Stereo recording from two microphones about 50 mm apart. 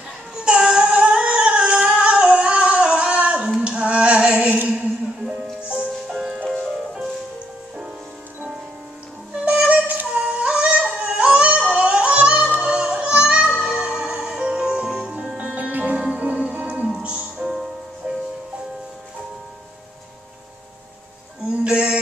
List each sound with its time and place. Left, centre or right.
0.4 s singing: right
3.6 s music: right
6.0 s music: centre
9.4 s music: right
10.1 s yodeling: right
13.7 s music: centre
15.3 s music: right
21.6 s a sound: right